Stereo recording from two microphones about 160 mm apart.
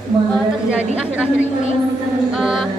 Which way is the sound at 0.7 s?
10° right (ahead or behind).